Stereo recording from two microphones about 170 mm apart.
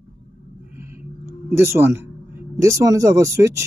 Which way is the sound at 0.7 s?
15° right (ahead or behind).